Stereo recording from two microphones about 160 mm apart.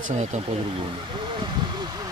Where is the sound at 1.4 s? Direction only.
30° right (ahead or behind).